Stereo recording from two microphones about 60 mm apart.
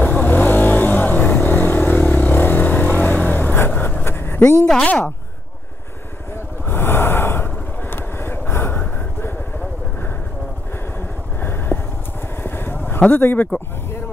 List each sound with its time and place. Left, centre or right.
0.0 s vehicle: left
6.7 s gasp: left
7.9 s vehicle: left
11.3 s a sound: left
12.4 s vehicle: left
13.2 s speech: left